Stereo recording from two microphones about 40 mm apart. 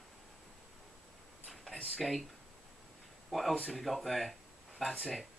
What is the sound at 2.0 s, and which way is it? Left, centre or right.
Speech, centre.